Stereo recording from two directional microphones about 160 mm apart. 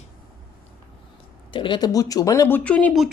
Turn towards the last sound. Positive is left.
turn(degrees=5)  # may be behind; listen again after turning